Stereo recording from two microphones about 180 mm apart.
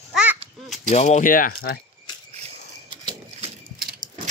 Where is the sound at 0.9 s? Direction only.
40° left (ahead or behind); by 1.8 s 55° left (ahead or behind).